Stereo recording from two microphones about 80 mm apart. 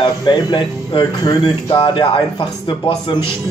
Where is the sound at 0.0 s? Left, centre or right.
Left.